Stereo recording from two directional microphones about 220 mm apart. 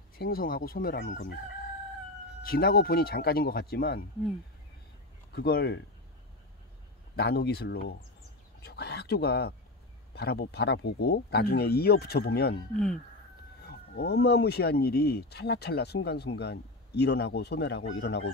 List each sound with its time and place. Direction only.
0.2 s speech: 40° left (ahead or behind)
2.4 s speech: 45° left (ahead or behind)
5.3 s speech: 45° left (ahead or behind)
7.2 s speech: 45° left (ahead or behind)
12.7 s speech: centre (ahead or behind)
13.6 s speech: 45° left (ahead or behind)